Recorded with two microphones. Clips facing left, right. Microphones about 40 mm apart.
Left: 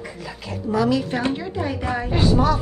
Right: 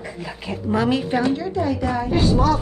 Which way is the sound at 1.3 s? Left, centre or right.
Left.